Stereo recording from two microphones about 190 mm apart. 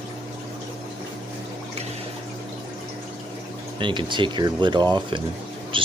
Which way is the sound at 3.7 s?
25° right (ahead or behind).